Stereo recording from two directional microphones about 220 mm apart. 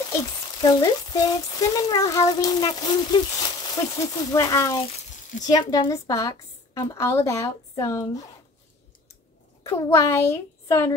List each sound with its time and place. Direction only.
0.1 s speech: 20° left (ahead or behind)
9.6 s speech: 15° left (ahead or behind)